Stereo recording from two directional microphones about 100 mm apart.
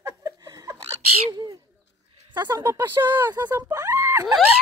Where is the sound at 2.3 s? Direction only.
45° right (ahead or behind).